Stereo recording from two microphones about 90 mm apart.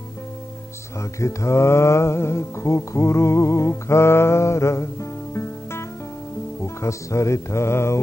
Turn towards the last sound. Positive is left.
turn(degrees=30)  # may be behind; listen again after turning